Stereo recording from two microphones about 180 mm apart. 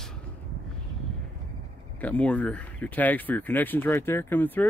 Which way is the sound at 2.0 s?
5° left (ahead or behind).